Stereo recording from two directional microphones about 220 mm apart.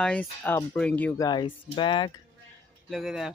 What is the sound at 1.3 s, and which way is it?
Speech, 20° left (ahead or behind).